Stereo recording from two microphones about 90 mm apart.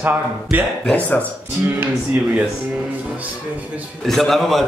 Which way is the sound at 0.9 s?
20° left (ahead or behind).